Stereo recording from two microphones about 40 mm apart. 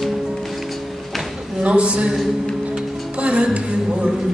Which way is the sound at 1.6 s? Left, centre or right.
Right.